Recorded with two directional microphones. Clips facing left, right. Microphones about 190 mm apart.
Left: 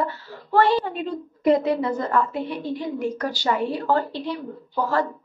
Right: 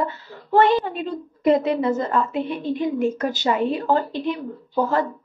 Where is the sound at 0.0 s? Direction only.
20° right (ahead or behind).